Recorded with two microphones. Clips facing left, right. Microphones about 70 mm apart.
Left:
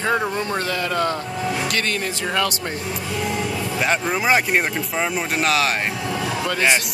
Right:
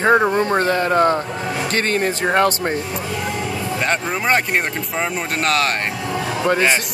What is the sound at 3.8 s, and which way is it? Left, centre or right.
Speech, centre.